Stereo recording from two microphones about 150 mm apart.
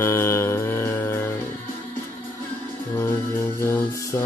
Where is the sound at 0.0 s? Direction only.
20° left (ahead or behind).